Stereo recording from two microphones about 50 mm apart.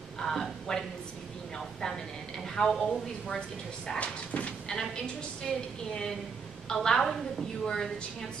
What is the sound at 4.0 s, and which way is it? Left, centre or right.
Speech, left.